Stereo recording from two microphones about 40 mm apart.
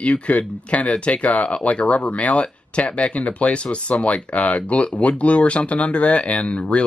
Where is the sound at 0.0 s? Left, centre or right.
Left.